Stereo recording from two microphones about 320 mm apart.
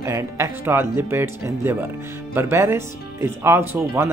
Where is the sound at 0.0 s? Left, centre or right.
Centre.